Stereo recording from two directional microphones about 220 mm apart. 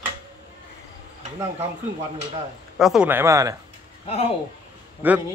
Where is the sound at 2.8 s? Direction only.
5° right (ahead or behind).